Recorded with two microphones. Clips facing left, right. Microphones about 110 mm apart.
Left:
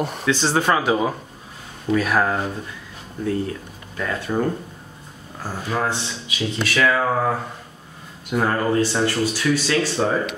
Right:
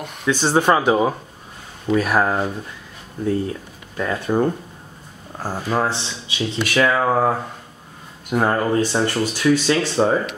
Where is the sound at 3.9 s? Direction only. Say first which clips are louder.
Right 3 dB; 25° right (ahead or behind).